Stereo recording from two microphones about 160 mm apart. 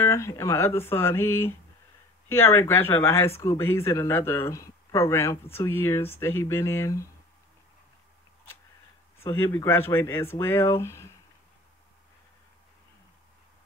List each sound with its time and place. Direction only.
0.0 s speech: 15° left (ahead or behind)
9.2 s speech: 15° left (ahead or behind)